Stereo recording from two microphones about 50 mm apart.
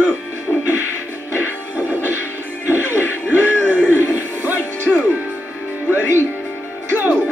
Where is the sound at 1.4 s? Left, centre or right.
Right.